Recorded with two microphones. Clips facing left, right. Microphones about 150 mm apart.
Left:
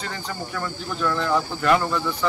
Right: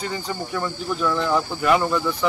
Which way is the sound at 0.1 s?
10° right (ahead or behind).